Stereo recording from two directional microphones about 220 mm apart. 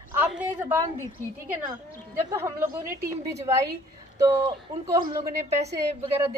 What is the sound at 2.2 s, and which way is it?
Speech, 15° right (ahead or behind).